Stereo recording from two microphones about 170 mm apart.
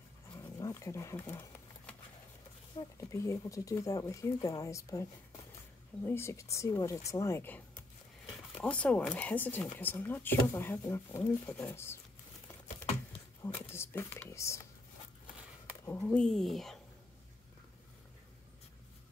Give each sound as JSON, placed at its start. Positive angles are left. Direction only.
{"t": 0.3, "sound": "roaring cats", "side_deg": 20}
{"t": 3.0, "sound": "speech", "side_deg": 20}
{"t": 13.4, "sound": "speech", "side_deg": 15}
{"t": 15.8, "sound": "speech", "side_deg": 15}